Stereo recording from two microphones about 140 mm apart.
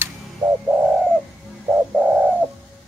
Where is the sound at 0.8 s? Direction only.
10° right (ahead or behind).